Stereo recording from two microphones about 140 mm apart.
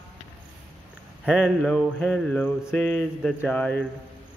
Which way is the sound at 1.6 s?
5° left (ahead or behind).